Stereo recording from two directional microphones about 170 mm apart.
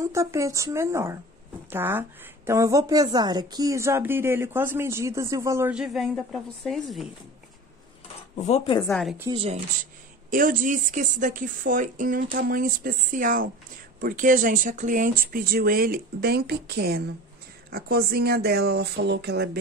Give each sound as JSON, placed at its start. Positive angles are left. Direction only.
{"t": 0.0, "sound": "a woman's voice", "side_deg": -15}
{"t": 8.4, "sound": "speech", "side_deg": 40}
{"t": 9.3, "sound": "speech", "side_deg": -35}
{"t": 10.3, "sound": "a woman's voice", "side_deg": -55}